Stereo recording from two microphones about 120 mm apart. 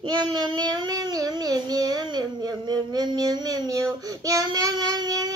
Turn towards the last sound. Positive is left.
turn(degrees=-30)  # may be behind; listen again after turning